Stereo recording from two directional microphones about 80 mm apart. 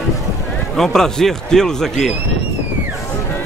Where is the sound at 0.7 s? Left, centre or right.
Centre.